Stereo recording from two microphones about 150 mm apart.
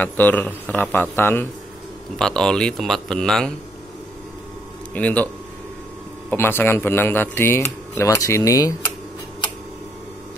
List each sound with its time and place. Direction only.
0.0 s speech: 10° left (ahead or behind)
4.9 s speech: 10° left (ahead or behind)
6.3 s speech: 15° left (ahead or behind)